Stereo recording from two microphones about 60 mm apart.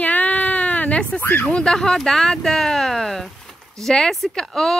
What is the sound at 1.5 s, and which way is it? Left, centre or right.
Speech, centre.